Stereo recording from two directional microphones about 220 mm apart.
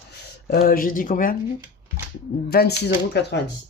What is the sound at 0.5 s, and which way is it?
Speech, 40° left (ahead or behind).